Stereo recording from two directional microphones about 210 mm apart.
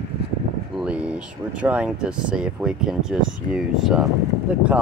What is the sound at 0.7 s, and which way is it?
Speech, 5° right (ahead or behind).